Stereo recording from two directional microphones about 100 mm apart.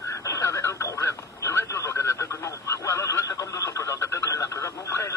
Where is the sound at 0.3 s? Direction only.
30° left (ahead or behind).